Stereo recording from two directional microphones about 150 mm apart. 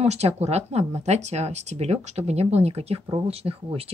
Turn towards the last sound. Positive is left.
turn(degrees=-40)  # may be behind; listen again after turning